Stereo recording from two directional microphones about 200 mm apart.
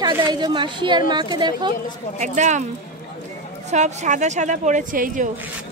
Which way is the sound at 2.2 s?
35° right (ahead or behind).